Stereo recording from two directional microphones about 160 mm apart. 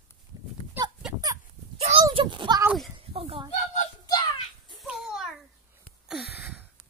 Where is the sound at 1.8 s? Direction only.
35° right (ahead or behind).